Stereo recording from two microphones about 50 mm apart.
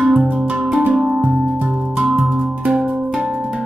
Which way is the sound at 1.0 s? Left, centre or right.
Centre.